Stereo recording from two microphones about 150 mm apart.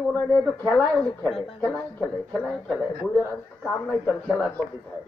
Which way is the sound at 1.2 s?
5° left (ahead or behind).